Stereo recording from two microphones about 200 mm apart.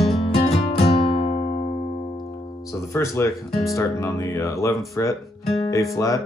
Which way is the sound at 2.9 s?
15° left (ahead or behind).